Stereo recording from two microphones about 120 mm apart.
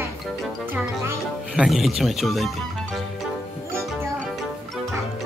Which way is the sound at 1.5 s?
5° right (ahead or behind).